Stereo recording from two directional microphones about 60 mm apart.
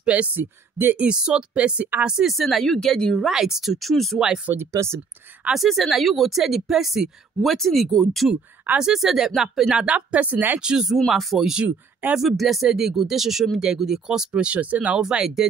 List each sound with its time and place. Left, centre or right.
0.0 s speech: right
0.4 s speech: right
1.0 s speech: centre
2.3 s speech: centre
3.3 s speech: centre
4.6 s speech: right
5.5 s speech: centre
8.7 s speech: centre
9.8 s speech: right
10.6 s speech: centre
11.0 s speech: centre; by 15.0 s right
15.0 s speech: centre